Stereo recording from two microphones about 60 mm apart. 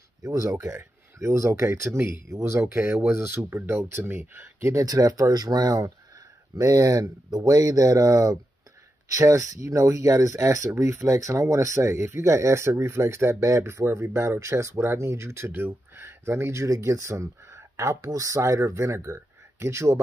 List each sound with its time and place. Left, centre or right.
0.2 s speech: right
0.7 s speech: right
4.8 s speech: right
9.1 s speech: right
18.7 s speech: right